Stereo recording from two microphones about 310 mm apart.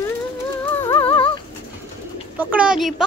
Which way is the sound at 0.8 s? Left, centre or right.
Centre.